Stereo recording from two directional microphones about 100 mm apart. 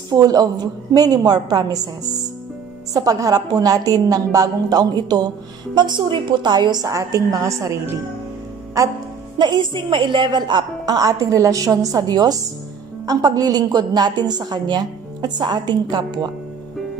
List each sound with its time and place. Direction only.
0.2 s a woman's voice: 40° right (ahead or behind)
9.4 s a woman's voice: 50° right (ahead or behind)